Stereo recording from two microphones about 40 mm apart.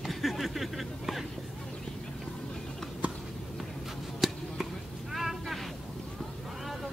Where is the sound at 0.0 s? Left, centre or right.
Centre.